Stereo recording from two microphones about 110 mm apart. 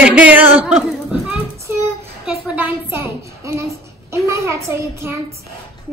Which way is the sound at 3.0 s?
25° right (ahead or behind).